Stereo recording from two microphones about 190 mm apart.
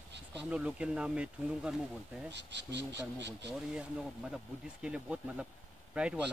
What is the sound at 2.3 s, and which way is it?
Speech, 65° right (ahead or behind).